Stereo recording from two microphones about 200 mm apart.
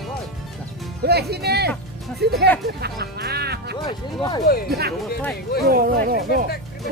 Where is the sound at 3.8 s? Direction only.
20° left (ahead or behind).